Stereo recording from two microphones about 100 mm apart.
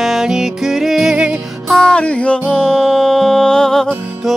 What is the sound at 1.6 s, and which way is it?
Music, 5° left (ahead or behind).